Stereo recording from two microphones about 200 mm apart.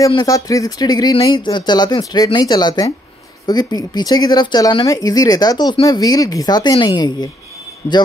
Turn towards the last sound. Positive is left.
turn(degrees=30)  # may be behind; listen again after turning